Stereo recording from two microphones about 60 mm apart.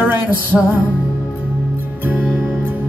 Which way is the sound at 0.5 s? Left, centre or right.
Centre.